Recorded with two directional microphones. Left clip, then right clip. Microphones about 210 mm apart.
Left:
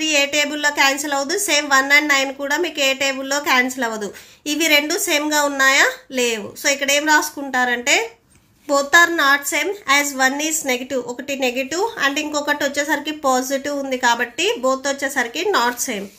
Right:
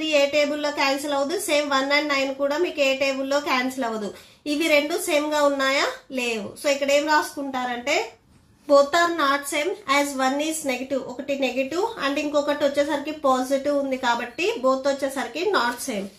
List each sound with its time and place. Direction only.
0.0 s a woman's voice: 45° left (ahead or behind)
8.6 s a woman's voice: 40° left (ahead or behind)